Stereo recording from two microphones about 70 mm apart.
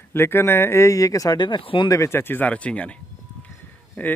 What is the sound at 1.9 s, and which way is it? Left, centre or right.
Speech, left.